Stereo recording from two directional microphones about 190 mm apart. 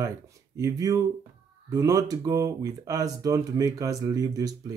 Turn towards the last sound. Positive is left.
turn(degrees=-20)  # may be behind; listen again after turning